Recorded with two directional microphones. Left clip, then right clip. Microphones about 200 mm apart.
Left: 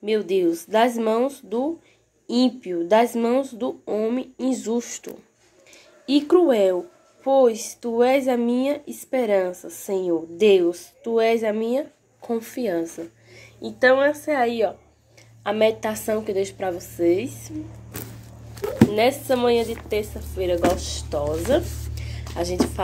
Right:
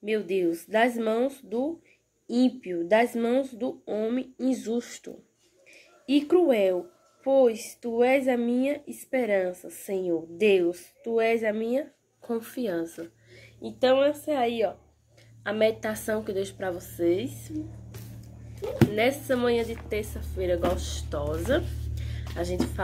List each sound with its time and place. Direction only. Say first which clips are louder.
0.0 s speech: left 6 dB; 5° right (ahead or behind)
12.2 s a woman's voice: left 5 dB; 15° right (ahead or behind)
18.6 s a sound: left 5 dB; 10° left (ahead or behind)
18.9 s a woman's voice: left 5 dB; 15° right (ahead or behind)
21.5 s music: left 5 dB; 15° right (ahead or behind)